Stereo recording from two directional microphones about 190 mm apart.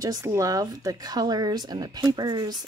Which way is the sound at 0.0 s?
20° right (ahead or behind).